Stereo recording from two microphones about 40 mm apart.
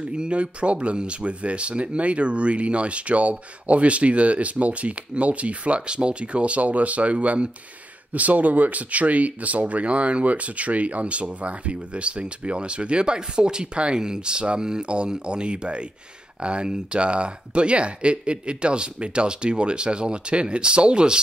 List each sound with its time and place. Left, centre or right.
0.1 s speech: right